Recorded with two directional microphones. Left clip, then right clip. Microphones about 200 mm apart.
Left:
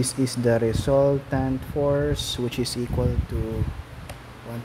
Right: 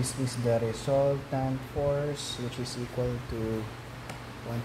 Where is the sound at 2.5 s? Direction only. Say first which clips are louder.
Left 9 dB; 50° left (ahead or behind).